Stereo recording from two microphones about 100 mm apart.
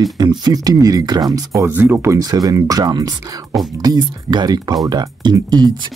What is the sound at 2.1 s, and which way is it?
Speech, 40° right (ahead or behind).